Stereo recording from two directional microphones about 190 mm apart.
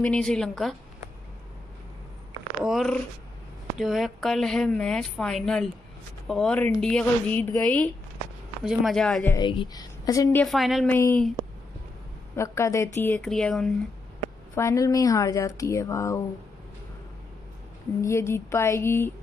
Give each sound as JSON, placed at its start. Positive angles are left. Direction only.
{"t": 0.0, "sound": "a woman's voice", "side_deg": 5}
{"t": 2.6, "sound": "a woman's voice", "side_deg": 0}
{"t": 9.4, "sound": "a woman's voice", "side_deg": 20}
{"t": 10.4, "sound": "a woman's voice", "side_deg": 0}
{"t": 12.4, "sound": "speech", "side_deg": 15}
{"t": 14.5, "sound": "speech", "side_deg": 15}
{"t": 18.0, "sound": "speech", "side_deg": 15}